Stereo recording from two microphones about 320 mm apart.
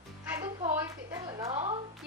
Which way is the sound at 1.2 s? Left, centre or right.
Centre.